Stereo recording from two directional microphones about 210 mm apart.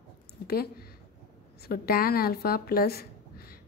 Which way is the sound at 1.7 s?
45° left (ahead or behind).